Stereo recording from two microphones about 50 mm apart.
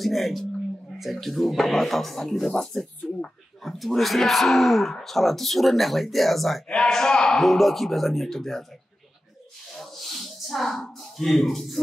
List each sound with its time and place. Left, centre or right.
0.0 s speech: centre
7.4 s speech: centre
9.8 s a sound: centre